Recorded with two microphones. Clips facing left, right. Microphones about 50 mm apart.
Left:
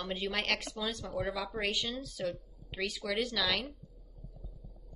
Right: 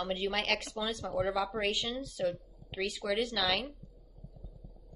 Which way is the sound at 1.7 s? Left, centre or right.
Right.